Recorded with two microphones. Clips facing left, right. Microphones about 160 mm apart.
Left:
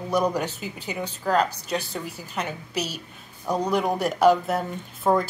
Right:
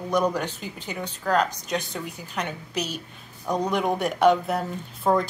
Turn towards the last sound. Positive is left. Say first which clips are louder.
# even
turn(degrees=0)  # may be behind; listen again after turning